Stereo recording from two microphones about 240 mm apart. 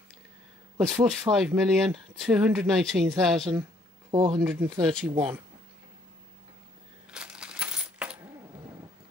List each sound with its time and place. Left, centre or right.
0.7 s speech: centre
4.1 s speech: centre
4.4 s speech: centre
7.1 s coin: centre